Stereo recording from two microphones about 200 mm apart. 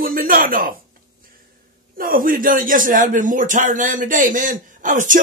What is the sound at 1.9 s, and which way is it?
A man's voice, 45° right (ahead or behind).